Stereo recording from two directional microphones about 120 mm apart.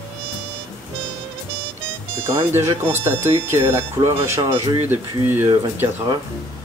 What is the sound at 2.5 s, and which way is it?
Speech, 20° right (ahead or behind).